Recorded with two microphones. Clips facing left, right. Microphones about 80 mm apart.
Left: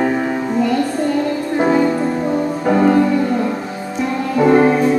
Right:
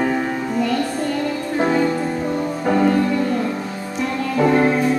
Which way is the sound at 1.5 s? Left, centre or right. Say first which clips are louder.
Left 4 dB; centre.